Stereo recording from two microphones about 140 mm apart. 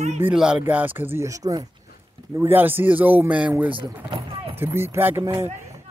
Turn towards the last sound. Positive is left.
turn(degrees=-20)  # may be behind; listen again after turning